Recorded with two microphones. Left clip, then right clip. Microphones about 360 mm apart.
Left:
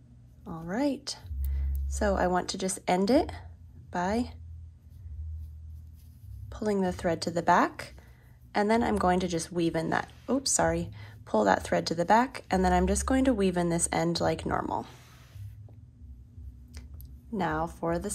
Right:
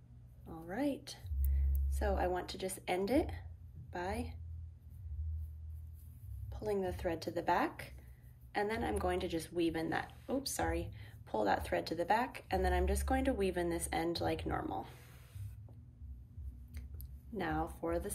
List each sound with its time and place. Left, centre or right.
0.7 s speech: centre
6.5 s speech: centre
17.4 s speech: centre